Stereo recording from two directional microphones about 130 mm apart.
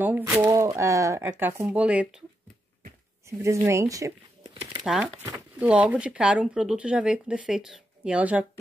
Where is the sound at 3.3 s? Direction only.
20° right (ahead or behind).